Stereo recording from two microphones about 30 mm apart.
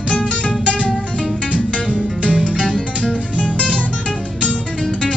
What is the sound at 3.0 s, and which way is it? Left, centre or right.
Music, left.